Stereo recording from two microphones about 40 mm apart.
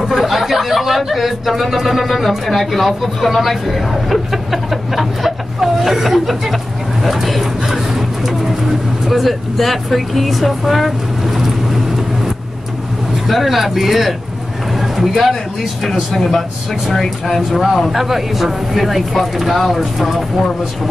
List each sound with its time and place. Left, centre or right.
0.0 s speech: centre
13.3 s speech: centre
14.8 s a sound: centre
15.8 s speech: centre